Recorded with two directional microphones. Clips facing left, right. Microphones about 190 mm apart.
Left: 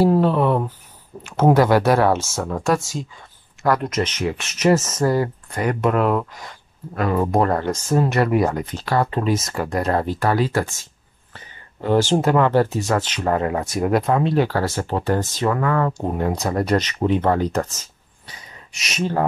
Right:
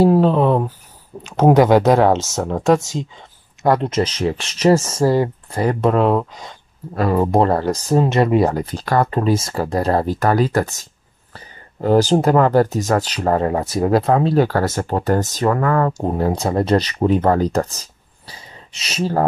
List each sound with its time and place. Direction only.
0.0 s speech: 20° right (ahead or behind)
7.0 s speech: 35° right (ahead or behind)
8.0 s speech: 25° right (ahead or behind); by 9.3 s 45° right (ahead or behind)
9.3 s speech: 30° right (ahead or behind)